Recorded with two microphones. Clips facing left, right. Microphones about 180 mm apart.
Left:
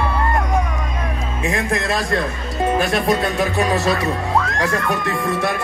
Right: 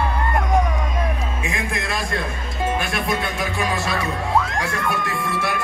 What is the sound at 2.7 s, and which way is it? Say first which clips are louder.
Speech: left 6 dB; 35° left (ahead or behind).